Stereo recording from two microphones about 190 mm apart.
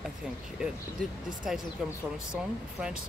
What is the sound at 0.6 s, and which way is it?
Speech, 5° right (ahead or behind).